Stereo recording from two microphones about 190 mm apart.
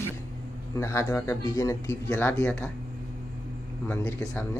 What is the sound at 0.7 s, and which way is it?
Speech, 15° left (ahead or behind).